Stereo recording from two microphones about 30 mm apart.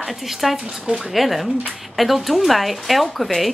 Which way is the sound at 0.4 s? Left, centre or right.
Centre.